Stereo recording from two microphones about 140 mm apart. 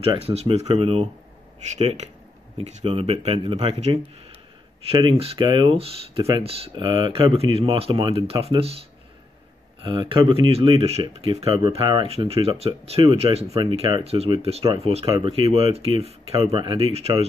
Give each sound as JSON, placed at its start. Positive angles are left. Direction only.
{"t": 0.0, "sound": "speech", "side_deg": -45}
{"t": 9.8, "sound": "speech", "side_deg": -35}
{"t": 13.5, "sound": "speech", "side_deg": -35}